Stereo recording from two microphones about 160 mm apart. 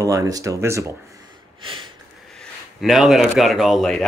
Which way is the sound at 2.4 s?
Centre (ahead or behind).